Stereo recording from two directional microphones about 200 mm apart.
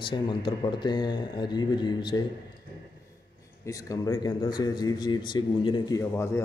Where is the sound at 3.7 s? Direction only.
15° left (ahead or behind).